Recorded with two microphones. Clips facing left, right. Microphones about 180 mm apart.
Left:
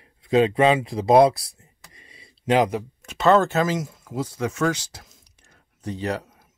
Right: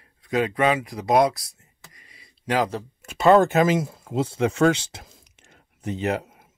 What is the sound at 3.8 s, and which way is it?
Speech, 30° right (ahead or behind).